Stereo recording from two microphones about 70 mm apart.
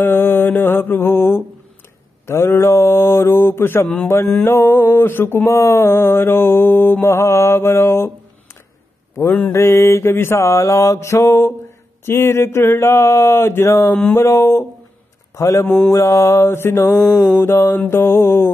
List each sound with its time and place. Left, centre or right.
0.0 s mantra: left
3.8 s a man's voice: centre
4.5 s mantra: left
9.5 s mantra: left
15.3 s a man's voice: left
15.9 s mantra: left